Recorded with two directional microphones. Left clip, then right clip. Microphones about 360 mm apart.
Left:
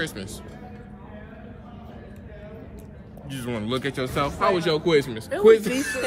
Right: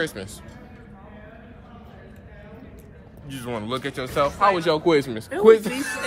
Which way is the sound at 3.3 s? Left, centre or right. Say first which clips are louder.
Even; centre.